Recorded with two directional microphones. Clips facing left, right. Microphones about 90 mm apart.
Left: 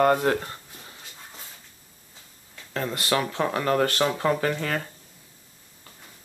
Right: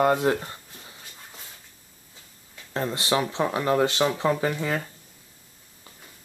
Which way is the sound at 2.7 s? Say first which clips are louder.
Right 1 dB; 25° right (ahead or behind).